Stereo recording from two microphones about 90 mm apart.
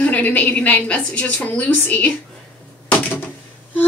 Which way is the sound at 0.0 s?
20° left (ahead or behind).